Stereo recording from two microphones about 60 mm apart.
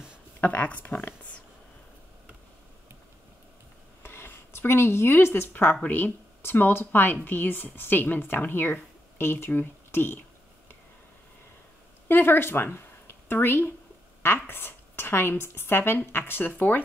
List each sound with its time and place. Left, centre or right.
0.4 s speech: left
4.0 s a sound: left
5.5 s a woman's voice: left
12.1 s a woman's voice: left